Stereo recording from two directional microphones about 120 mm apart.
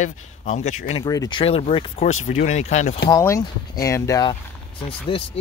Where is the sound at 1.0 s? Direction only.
35° left (ahead or behind).